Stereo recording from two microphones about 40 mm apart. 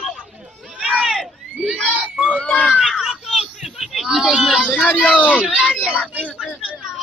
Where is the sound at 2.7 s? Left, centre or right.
Centre.